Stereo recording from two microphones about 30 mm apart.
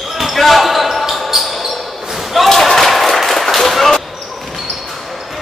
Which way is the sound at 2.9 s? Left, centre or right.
Centre.